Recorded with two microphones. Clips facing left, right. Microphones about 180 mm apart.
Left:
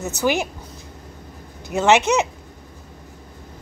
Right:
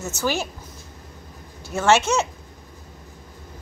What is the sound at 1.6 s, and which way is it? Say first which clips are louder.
Speech: left 2 dB; 15° left (ahead or behind).